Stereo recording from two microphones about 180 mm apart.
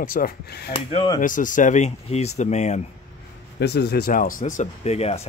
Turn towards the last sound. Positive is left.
turn(degrees=35)  # may be behind; listen again after turning